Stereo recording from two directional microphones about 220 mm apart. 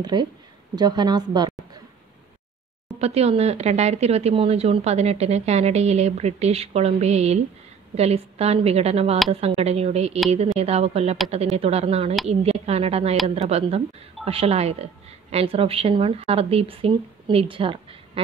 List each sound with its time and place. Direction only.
0.0 s a woman's voice: 20° right (ahead or behind)
3.0 s a woman's voice: 30° right (ahead or behind)